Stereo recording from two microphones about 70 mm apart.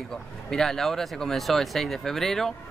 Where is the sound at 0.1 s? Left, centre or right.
Centre.